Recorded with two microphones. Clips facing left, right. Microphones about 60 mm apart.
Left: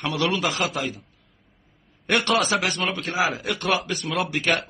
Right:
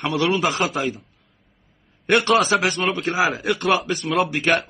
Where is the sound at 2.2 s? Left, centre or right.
Right.